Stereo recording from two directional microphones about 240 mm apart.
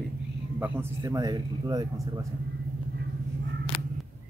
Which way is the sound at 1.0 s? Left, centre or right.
Centre.